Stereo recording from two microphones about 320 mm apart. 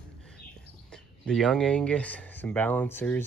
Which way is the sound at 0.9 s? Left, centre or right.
Centre.